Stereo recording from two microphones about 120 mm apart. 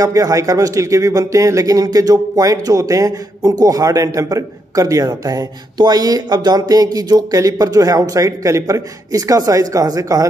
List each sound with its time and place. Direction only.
0.0 s a man's voice: 25° right (ahead or behind)